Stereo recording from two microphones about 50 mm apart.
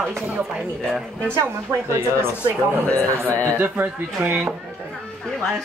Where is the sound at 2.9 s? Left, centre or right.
Left.